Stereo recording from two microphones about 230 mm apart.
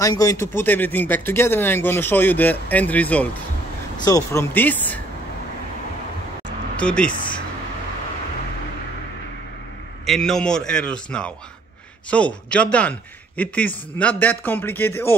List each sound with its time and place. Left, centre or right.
0.0 s speech: centre
6.8 s speech: centre
7.1 s speech: left
10.0 s a man's voice: centre